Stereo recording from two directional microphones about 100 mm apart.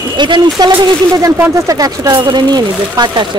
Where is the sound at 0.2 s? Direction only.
50° right (ahead or behind).